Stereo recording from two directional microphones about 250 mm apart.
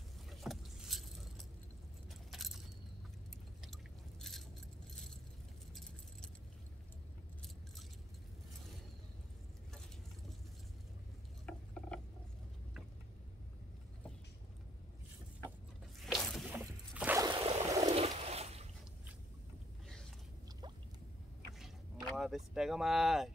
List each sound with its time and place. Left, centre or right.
0.3 s vehicle: centre
2.3 s keys jangling: centre
3.6 s a sound: centre
11.4 s mechanisms: centre
16.0 s squish: centre
17.3 s a sound: right
21.5 s boat: centre